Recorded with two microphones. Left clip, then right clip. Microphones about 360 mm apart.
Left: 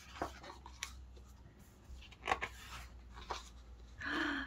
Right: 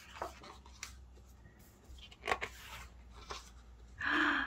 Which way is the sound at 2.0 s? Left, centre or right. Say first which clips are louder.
Right 1 dB; centre.